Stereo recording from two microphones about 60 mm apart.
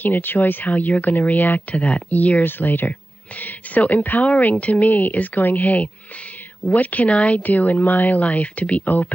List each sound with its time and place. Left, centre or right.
0.0 s speech: left